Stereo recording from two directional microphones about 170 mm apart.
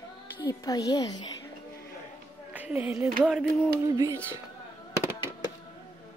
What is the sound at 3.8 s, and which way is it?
Music, 20° right (ahead or behind).